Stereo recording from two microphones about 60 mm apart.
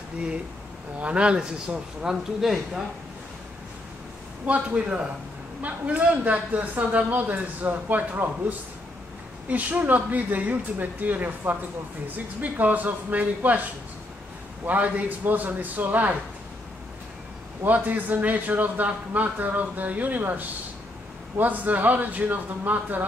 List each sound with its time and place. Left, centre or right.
0.9 s a man's voice: right
4.5 s a man's voice: right
14.7 s a man's voice: right
17.6 s a man's voice: right